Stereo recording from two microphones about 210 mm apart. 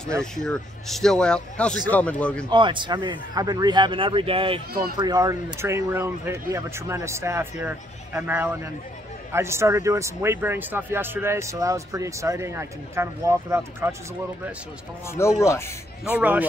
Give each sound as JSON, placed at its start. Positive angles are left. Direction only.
{"t": 0.2, "sound": "a man's voice", "side_deg": 5}
{"t": 2.5, "sound": "a man's voice", "side_deg": -20}
{"t": 15.0, "sound": "speech", "side_deg": 10}
{"t": 16.1, "sound": "speech", "side_deg": -5}